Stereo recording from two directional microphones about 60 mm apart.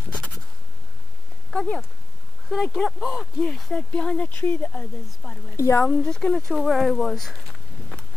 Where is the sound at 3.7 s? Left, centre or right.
Centre.